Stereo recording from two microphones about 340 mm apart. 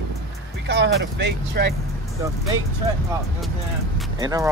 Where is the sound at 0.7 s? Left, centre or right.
Right.